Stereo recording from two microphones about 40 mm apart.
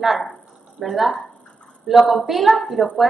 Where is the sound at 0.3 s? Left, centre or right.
Centre.